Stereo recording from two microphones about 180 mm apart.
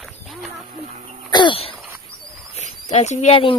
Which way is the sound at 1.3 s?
25° left (ahead or behind).